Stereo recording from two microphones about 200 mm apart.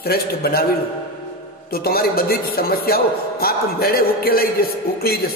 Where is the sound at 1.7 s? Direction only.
50° left (ahead or behind).